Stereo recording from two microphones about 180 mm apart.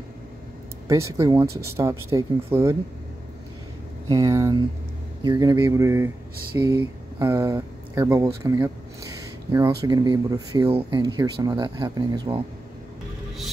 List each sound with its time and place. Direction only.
0.8 s speech: 15° right (ahead or behind)
4.1 s speech: 15° right (ahead or behind)